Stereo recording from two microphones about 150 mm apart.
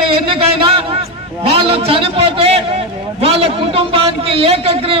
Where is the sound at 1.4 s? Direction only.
40° right (ahead or behind).